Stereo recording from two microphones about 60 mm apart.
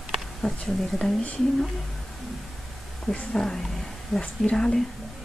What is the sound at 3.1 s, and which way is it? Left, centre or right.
Speech, centre.